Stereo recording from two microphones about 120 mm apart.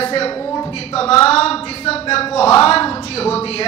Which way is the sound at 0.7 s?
55° left (ahead or behind).